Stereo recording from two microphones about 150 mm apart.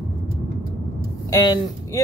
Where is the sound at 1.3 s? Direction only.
25° left (ahead or behind).